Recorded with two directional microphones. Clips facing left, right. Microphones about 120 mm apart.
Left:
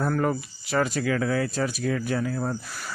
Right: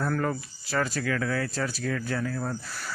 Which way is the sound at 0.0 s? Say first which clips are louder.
Left 3 dB; 20° left (ahead or behind).